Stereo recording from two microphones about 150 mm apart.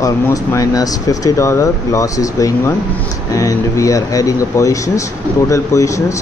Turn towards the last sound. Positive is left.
turn(degrees=20)  # may be behind; listen again after turning